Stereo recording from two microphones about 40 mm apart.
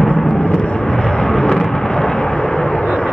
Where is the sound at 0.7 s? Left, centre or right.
Left.